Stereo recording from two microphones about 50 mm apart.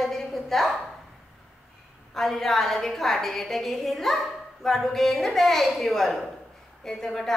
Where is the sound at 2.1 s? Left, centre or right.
Centre.